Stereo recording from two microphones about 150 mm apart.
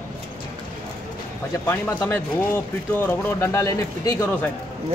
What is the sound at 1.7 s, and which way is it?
Speech, 15° left (ahead or behind).